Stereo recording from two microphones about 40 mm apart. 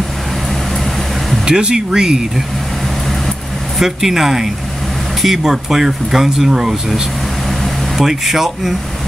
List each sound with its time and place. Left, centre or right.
1.4 s speech: centre
3.8 s speech: centre
8.0 s speech: centre